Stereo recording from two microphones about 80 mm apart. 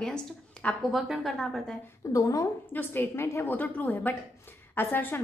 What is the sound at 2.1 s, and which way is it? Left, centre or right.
Speech, left.